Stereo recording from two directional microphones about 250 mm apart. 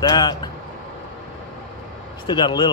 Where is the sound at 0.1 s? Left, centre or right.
Centre.